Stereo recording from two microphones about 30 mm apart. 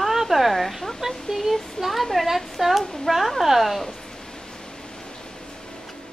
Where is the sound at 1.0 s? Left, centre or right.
Centre.